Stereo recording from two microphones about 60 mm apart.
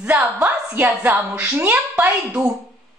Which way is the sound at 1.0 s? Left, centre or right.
Right.